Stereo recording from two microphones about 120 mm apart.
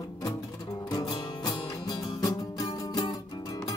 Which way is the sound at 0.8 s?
35° left (ahead or behind).